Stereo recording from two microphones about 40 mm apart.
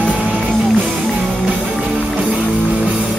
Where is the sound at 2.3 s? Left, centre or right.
Right.